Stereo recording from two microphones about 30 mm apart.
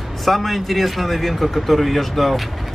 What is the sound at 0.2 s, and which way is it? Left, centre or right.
A man's voice, centre.